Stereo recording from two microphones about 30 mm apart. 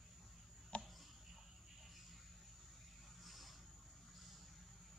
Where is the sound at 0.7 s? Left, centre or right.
Left.